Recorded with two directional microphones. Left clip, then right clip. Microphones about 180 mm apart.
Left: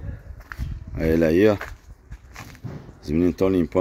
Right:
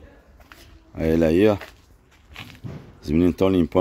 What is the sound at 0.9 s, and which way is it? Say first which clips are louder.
Speech: even; 15° right (ahead or behind).